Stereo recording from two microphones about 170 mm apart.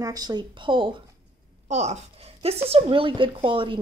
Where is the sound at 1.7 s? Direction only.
40° right (ahead or behind).